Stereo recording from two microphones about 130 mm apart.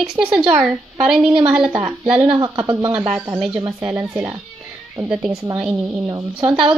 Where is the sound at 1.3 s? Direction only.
40° right (ahead or behind).